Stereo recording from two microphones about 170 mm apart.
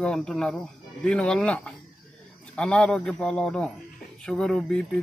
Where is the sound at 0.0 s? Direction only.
5° left (ahead or behind).